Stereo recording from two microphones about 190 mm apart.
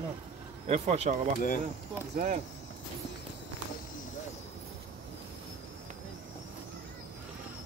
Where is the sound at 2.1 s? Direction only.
45° right (ahead or behind).